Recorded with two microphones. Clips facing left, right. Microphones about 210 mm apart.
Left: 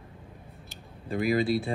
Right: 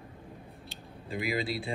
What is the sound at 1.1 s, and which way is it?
Speech, 55° left (ahead or behind).